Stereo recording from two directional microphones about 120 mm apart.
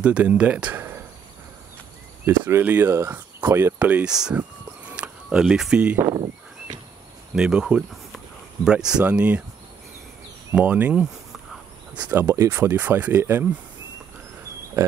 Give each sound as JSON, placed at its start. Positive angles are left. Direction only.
{"t": 0.0, "sound": "speech", "side_deg": -10}
{"t": 2.2, "sound": "speech", "side_deg": -20}
{"t": 6.1, "sound": "a sound", "side_deg": -45}
{"t": 7.3, "sound": "speech", "side_deg": -5}
{"t": 10.5, "sound": "speech", "side_deg": -10}
{"t": 12.1, "sound": "speech", "side_deg": -20}